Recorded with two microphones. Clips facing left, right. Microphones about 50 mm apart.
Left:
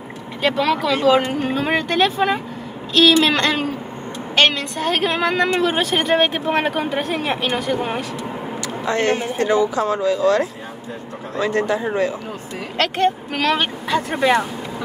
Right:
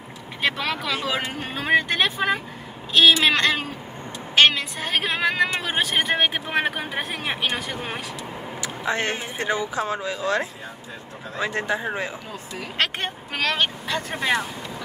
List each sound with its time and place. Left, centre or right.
0.4 s speech: centre
8.6 s speech: centre
13.4 s speech: centre